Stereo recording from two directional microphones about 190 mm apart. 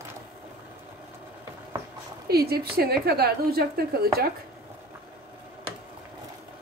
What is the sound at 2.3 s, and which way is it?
A woman's voice, 55° right (ahead or behind).